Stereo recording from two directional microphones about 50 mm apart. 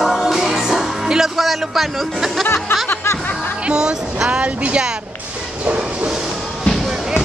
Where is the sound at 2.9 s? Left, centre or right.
Left.